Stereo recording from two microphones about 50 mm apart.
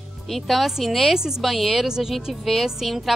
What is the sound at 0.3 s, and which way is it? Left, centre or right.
A woman's voice, centre.